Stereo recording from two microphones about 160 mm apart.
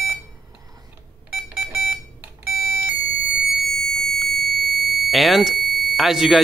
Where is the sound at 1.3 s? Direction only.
10° right (ahead or behind).